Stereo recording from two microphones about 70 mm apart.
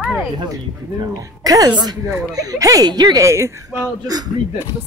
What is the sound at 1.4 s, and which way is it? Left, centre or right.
A woman's voice, right.